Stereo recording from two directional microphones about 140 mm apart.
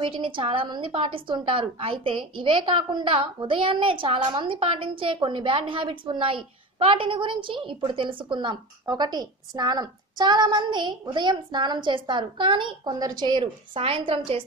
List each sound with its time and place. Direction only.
0.0 s a woman's voice: 40° right (ahead or behind)